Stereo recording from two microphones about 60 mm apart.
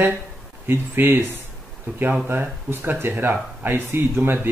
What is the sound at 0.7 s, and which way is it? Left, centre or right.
Speech, right.